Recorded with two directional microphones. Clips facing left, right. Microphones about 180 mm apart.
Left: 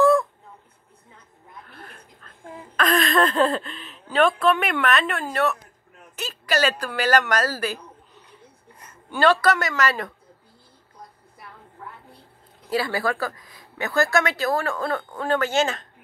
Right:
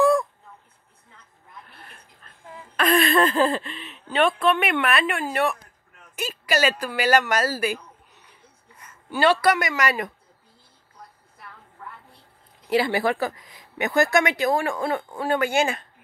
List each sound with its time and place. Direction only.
2.7 s a woman's voice: 10° right (ahead or behind)
9.1 s speech: 10° right (ahead or behind)
12.6 s speech: 20° right (ahead or behind)